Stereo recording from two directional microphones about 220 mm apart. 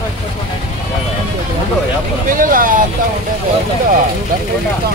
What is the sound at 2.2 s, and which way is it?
Speech, 40° right (ahead or behind).